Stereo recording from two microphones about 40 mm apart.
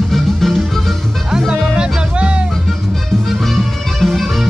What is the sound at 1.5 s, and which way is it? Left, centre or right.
Music, centre.